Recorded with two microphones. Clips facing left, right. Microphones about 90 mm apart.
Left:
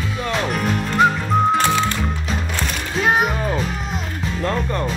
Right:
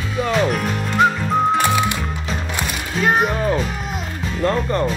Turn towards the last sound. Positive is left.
turn(degrees=0)  # may be behind; listen again after turning